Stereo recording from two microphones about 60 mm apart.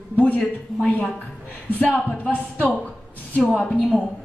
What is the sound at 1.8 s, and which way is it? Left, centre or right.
A woman's voice, left.